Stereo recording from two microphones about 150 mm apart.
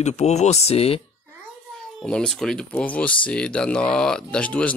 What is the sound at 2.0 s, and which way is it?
Speech, 5° left (ahead or behind).